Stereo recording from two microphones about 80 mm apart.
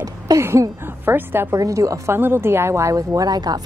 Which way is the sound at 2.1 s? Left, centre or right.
Right.